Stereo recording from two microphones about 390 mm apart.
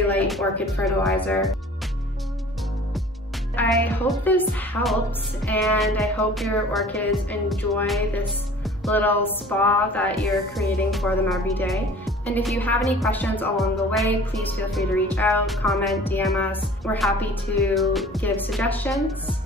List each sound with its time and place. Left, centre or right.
0.3 s music: centre
3.5 s music: centre